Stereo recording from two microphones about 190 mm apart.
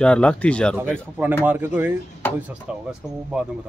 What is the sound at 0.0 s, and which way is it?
Speech, 5° left (ahead or behind).